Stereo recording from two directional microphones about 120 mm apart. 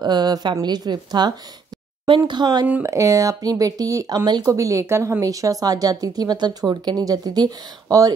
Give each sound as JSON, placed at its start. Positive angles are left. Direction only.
{"t": 0.0, "sound": "a woman's voice", "side_deg": -35}
{"t": 2.8, "sound": "speech", "side_deg": -25}